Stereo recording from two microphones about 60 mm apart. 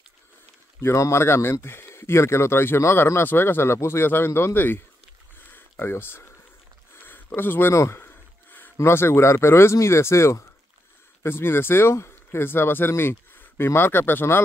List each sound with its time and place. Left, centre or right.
0.7 s speech: left
5.5 s a sound: left
7.7 s speech: left
8.0 s a sound: left
8.7 s speech: left
11.2 s speech: left